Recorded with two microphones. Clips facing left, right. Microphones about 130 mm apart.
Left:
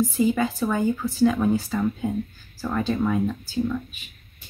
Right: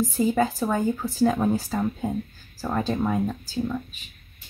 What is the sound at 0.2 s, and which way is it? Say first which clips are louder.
Speech: right 1 dB; 35° right (ahead or behind).